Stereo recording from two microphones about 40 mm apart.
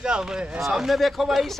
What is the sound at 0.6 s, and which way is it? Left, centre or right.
Speech, centre.